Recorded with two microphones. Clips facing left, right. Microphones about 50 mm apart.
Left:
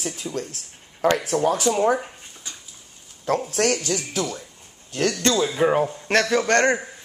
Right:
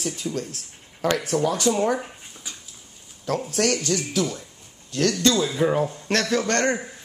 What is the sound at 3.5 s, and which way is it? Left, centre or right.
Speech, left.